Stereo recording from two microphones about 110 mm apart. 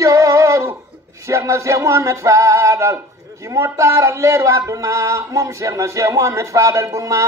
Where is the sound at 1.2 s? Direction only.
25° right (ahead or behind).